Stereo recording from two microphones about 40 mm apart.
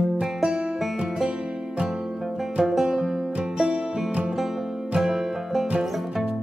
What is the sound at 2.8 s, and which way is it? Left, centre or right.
Music, centre.